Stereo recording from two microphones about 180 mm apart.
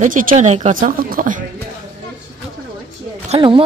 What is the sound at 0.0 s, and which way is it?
Speech, 50° right (ahead or behind).